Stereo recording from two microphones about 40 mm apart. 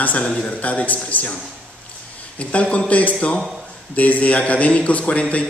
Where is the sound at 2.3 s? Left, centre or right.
Left.